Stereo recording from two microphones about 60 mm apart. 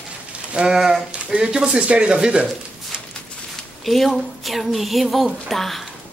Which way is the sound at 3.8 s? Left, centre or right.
Centre.